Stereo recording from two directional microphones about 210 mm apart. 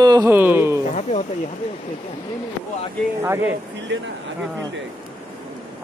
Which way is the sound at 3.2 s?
10° right (ahead or behind).